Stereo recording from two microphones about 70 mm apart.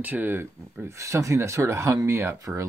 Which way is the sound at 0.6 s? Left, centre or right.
Right.